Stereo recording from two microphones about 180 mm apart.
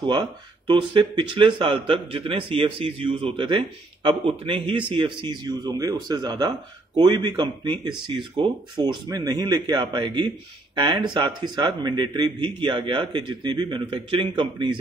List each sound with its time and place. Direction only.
0.0 s speech: 25° right (ahead or behind)